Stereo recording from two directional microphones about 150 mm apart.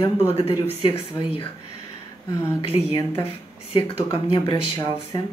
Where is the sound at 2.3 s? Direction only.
20° left (ahead or behind).